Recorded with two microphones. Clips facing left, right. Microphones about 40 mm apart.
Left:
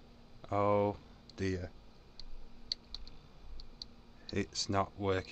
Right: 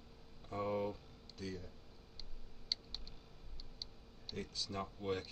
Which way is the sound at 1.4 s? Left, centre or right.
Left.